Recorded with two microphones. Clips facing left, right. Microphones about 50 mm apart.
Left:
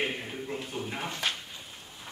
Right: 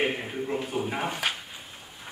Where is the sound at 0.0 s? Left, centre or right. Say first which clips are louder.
Right 5 dB; centre.